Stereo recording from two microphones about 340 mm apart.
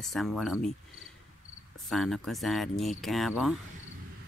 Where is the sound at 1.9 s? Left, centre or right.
Centre.